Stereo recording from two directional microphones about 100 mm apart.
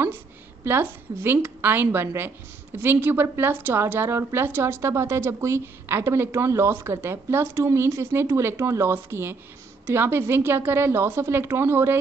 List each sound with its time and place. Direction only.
0.7 s a woman's voice: 20° right (ahead or behind)